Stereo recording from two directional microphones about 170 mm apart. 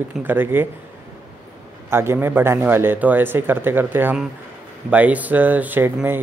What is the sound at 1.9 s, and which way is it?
Speech, 15° right (ahead or behind).